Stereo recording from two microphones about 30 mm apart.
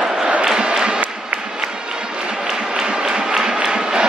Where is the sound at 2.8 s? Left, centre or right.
Centre.